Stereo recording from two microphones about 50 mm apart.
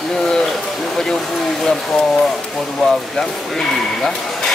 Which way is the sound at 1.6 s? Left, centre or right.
Centre.